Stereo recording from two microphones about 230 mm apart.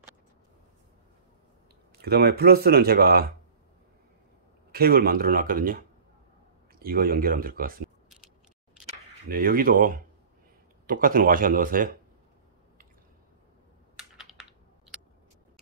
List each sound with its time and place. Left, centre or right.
2.0 s speech: right
4.7 s speech: right
9.3 s speech: right
13.9 s computer keyboard: centre